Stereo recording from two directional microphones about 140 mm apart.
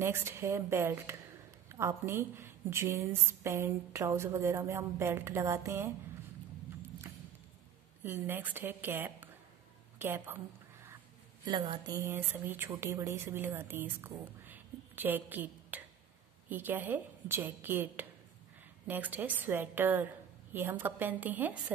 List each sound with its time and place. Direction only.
0.0 s a woman's voice: 20° right (ahead or behind)
8.0 s a woman's voice: 15° right (ahead or behind)
9.9 s a sound: 15° right (ahead or behind)
11.4 s a woman's voice: 30° right (ahead or behind); by 21.7 s 10° right (ahead or behind)